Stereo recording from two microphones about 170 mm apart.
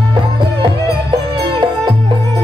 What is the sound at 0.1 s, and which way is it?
Music, 30° right (ahead or behind).